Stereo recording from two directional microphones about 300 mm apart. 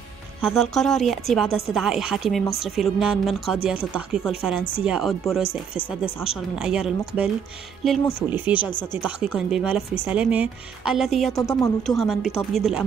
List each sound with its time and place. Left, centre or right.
0.4 s a woman's voice: centre
5.8 s speech: centre
6.2 s a woman's voice: centre
11.3 s a woman's voice: centre